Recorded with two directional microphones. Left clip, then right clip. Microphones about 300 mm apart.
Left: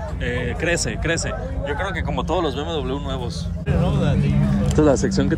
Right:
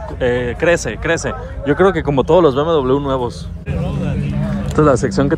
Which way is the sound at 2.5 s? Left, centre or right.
Centre.